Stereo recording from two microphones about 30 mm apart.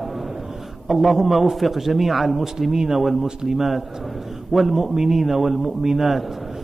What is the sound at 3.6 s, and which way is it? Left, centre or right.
A man's voice, centre.